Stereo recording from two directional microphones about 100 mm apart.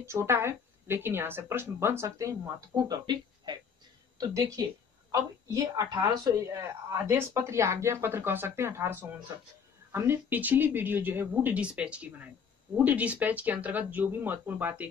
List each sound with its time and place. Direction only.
0.0 s a woman's voice: 25° right (ahead or behind)